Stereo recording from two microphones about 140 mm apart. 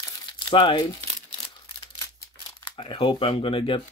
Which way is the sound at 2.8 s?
40° left (ahead or behind).